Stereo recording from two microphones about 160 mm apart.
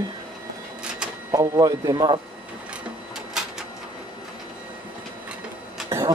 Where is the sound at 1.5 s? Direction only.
20° right (ahead or behind).